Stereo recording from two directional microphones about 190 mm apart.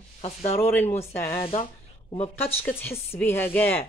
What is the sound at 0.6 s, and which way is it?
Speech, 15° left (ahead or behind).